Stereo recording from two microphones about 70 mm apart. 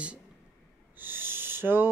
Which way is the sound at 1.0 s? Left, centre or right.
Right.